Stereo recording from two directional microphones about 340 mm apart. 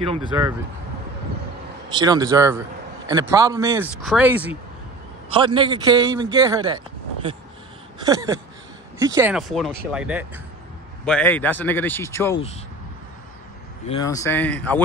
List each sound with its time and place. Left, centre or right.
0.3 s a man's voice: centre
1.9 s a man's voice: centre
8.0 s a man's voice: centre
13.8 s speech: centre